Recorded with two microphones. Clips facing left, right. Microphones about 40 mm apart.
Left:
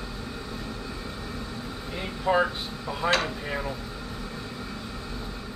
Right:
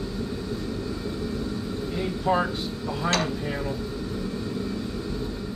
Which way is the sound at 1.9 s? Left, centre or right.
Centre.